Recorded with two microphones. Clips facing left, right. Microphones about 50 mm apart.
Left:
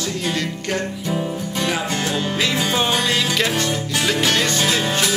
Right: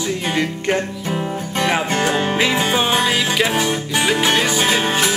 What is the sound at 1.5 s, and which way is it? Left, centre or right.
Music, right.